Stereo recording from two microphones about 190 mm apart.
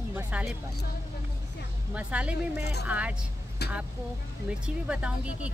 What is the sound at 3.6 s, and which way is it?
Speech, 60° left (ahead or behind).